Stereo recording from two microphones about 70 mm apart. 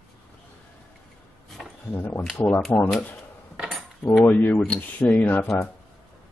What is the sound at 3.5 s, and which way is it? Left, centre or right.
Cutlery, centre.